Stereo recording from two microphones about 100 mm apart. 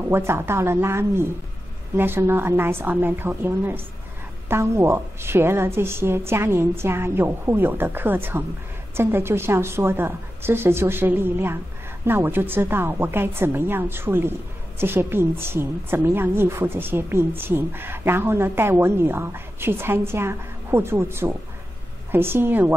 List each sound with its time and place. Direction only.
0.1 s a woman's voice: 25° right (ahead or behind)